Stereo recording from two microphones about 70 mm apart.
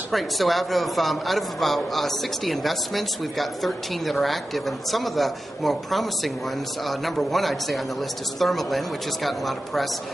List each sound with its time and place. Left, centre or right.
0.1 s a man's voice: centre